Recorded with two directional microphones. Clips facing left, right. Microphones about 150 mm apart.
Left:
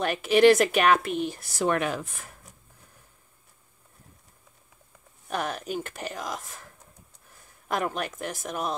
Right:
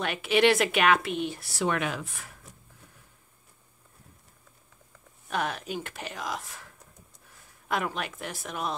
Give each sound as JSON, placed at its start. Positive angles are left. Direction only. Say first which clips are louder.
{"t": 0.0, "sound": "speech", "louder": "left 5 dB", "side_deg": 40}
{"t": 5.3, "sound": "speech", "louder": "left 1 dB", "side_deg": 45}